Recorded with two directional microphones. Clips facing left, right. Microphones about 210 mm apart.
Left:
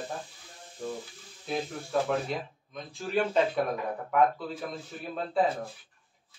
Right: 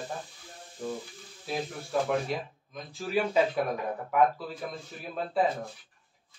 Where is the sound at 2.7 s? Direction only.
5° right (ahead or behind).